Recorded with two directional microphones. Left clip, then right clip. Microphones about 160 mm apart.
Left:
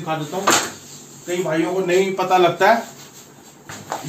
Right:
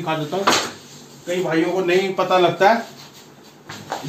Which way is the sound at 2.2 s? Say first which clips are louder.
Even; 50° right (ahead or behind).